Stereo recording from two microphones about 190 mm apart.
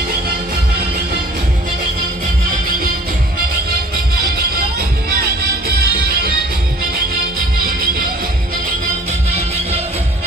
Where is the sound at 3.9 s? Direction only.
50° right (ahead or behind).